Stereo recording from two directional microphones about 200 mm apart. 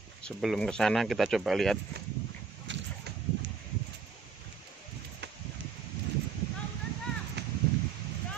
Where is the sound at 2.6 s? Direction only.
65° right (ahead or behind).